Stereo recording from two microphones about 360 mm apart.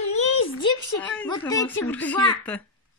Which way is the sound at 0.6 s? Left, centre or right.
Centre.